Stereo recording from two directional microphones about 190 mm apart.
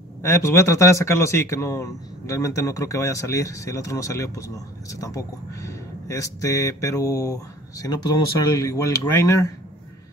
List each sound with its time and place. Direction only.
0.2 s speech: 15° left (ahead or behind)